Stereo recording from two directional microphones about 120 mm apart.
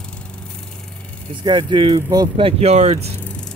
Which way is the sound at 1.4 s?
40° right (ahead or behind).